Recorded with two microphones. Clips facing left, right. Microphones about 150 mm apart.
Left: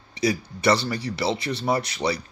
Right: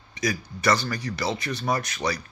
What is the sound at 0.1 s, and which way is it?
Speech, 30° left (ahead or behind).